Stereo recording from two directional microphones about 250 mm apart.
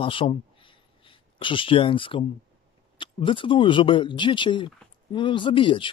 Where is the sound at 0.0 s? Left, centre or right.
Left.